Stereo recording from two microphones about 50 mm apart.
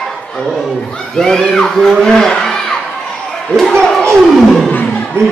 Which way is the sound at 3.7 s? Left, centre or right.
Centre.